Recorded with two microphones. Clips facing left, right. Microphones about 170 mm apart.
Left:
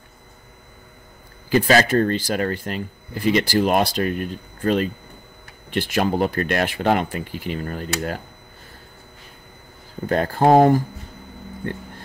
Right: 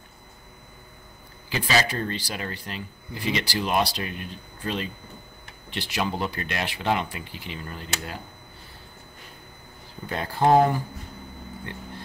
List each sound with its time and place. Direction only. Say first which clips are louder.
1.5 s speech: left 9 dB; 50° left (ahead or behind)
10.0 s speech: left 5 dB; 50° left (ahead or behind)